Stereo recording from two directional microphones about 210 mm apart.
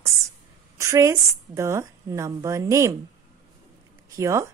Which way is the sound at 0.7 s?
15° right (ahead or behind).